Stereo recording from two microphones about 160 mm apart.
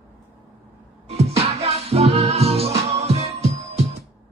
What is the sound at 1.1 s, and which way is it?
Music, 40° right (ahead or behind).